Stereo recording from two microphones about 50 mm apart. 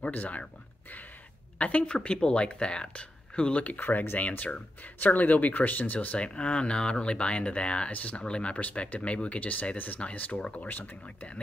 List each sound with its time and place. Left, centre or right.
0.1 s speech: left
1.6 s speech: left